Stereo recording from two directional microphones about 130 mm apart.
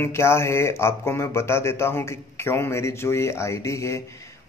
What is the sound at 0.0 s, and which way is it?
Speech, 20° left (ahead or behind).